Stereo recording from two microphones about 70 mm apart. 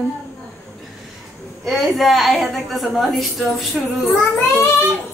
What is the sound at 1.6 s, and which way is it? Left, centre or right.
A woman's voice, centre.